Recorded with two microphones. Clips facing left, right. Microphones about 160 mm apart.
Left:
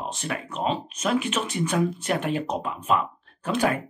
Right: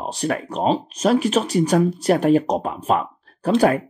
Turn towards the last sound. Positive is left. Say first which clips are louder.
# right 7 dB
turn(degrees=-35)  # may be behind; listen again after turning